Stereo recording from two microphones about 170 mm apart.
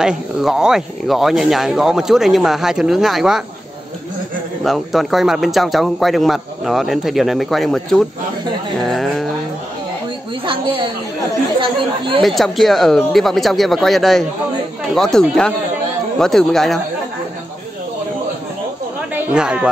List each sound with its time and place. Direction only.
0.0 s speech: 5° right (ahead or behind)
4.6 s speech: centre (ahead or behind)
8.8 s a sound: centre (ahead or behind)
10.4 s a sound: 30° right (ahead or behind)
12.2 s speech: centre (ahead or behind)
19.1 s speech: 5° right (ahead or behind)